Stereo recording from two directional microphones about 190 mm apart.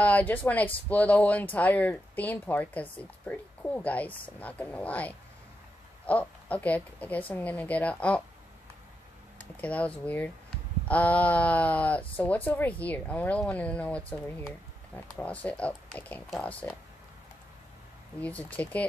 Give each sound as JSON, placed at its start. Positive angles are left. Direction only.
{"t": 0.0, "sound": "speech", "side_deg": 10}
{"t": 9.4, "sound": "speech", "side_deg": 5}
{"t": 18.2, "sound": "speech", "side_deg": 10}